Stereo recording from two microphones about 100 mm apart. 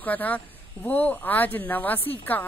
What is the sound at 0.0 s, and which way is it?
Speech, 15° left (ahead or behind).